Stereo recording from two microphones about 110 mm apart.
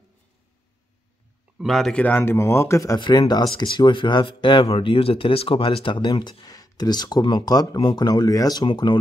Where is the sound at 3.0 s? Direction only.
40° left (ahead or behind).